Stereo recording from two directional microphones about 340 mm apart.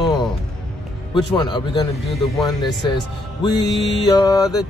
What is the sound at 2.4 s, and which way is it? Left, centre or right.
A man's voice, centre.